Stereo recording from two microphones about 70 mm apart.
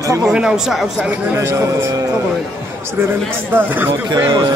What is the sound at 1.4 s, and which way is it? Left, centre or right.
Speech, right.